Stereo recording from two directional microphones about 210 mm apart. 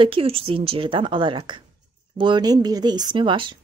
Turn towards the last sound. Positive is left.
turn(degrees=-25)  # may be behind; listen again after turning